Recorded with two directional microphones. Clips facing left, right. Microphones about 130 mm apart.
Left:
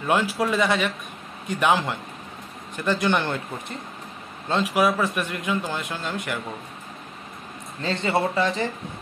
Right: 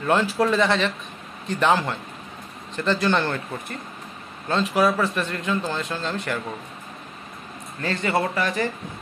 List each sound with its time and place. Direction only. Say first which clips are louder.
0.0 s a man's voice: right 2 dB; 10° left (ahead or behind)
7.8 s speech: even; 25° left (ahead or behind)